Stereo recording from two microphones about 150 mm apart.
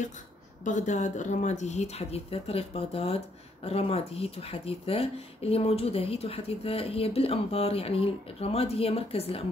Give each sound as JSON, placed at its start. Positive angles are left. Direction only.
{"t": 0.7, "sound": "speech", "side_deg": 55}